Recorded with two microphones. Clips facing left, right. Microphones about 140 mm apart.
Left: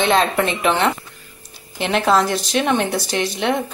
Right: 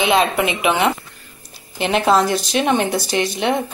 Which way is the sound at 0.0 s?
10° right (ahead or behind).